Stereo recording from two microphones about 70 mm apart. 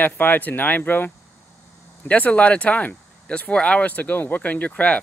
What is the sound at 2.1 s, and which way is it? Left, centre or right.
Speech, centre.